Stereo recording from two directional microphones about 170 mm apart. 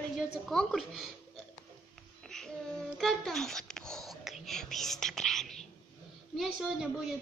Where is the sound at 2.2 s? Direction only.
Centre (ahead or behind).